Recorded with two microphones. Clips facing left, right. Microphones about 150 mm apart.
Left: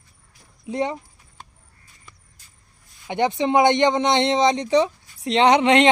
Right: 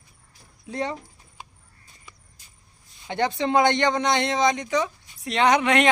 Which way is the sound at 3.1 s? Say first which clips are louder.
Left 3 dB; 20° left (ahead or behind).